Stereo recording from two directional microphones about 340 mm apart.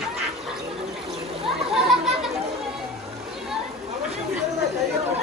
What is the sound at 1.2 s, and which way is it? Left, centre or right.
Splash, centre.